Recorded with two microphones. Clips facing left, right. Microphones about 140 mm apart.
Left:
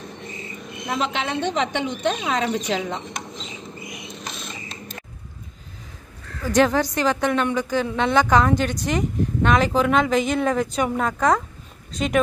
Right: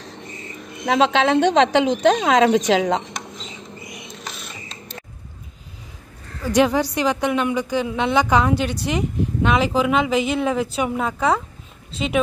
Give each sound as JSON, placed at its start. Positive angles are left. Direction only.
{"t": 0.8, "sound": "a woman's voice", "side_deg": -90}
{"t": 6.4, "sound": "a woman's voice", "side_deg": -10}